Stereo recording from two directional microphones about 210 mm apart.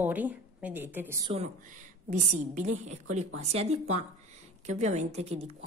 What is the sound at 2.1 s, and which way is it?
A woman's voice, 35° right (ahead or behind).